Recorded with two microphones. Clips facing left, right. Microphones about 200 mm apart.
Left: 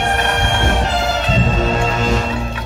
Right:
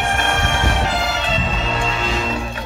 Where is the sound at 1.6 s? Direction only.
45° left (ahead or behind).